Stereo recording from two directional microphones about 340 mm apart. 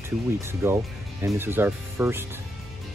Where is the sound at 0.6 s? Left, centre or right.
Centre.